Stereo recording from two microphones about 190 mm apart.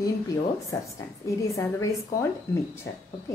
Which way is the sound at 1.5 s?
15° left (ahead or behind).